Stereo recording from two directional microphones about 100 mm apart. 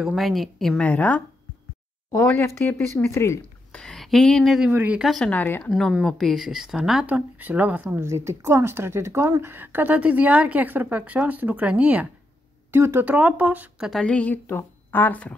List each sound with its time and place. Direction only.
0.0 s speech: centre (ahead or behind)
0.8 s a woman's voice: 15° left (ahead or behind)
2.3 s speech: 25° left (ahead or behind)
3.7 s speech: 5° left (ahead or behind)
4.6 s speech: 15° right (ahead or behind)
5.0 s speech: centre (ahead or behind)
5.3 s a woman's voice: 15° left (ahead or behind)
5.7 s speech: 5° left (ahead or behind)
7.1 s speech: 15° right (ahead or behind)
7.8 s speech: 25° right (ahead or behind)
14.0 s a woman's voice: 15° left (ahead or behind)